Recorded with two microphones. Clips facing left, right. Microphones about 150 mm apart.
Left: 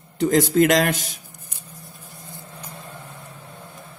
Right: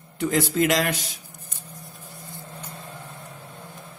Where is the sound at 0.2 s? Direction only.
45° left (ahead or behind).